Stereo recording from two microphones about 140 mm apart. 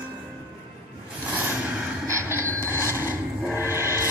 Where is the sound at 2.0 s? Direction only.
20° right (ahead or behind).